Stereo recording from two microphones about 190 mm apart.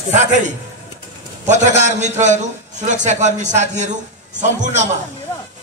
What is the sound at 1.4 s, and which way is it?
A man's voice, 40° right (ahead or behind).